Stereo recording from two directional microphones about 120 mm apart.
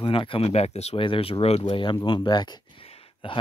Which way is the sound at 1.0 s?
50° left (ahead or behind).